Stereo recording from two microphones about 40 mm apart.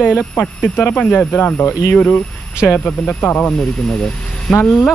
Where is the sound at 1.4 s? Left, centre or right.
Left.